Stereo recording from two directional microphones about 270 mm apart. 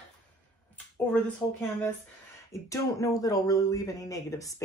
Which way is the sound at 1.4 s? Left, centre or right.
Centre.